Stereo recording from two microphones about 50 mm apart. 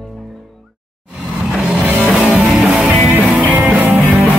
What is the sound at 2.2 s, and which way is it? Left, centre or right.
Music, right.